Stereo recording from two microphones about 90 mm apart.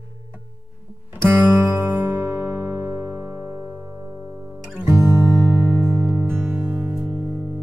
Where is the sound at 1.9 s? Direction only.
25° right (ahead or behind).